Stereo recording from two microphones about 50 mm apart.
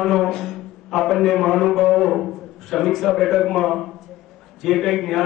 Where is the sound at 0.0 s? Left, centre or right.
Centre.